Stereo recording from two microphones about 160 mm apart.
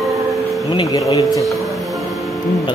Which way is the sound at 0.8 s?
20° left (ahead or behind).